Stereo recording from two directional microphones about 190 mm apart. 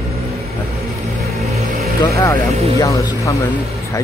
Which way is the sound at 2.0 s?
15° left (ahead or behind).